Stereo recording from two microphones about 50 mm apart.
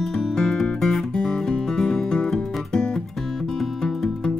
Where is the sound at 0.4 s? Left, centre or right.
Centre.